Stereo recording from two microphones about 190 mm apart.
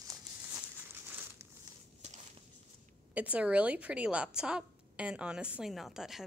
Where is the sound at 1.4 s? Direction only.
15° right (ahead or behind).